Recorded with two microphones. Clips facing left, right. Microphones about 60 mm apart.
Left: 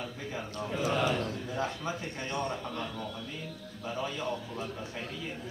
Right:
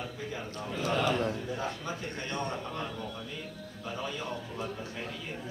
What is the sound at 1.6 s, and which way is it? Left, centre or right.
Speech, left.